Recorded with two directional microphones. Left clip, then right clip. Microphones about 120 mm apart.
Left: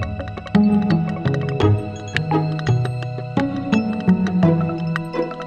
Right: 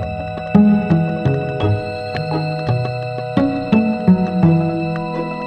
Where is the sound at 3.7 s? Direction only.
Centre (ahead or behind).